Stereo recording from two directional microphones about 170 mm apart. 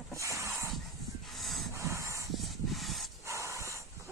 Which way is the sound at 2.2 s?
Centre (ahead or behind).